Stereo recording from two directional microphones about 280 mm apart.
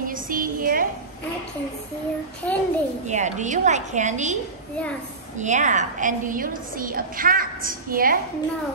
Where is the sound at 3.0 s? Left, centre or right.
Right.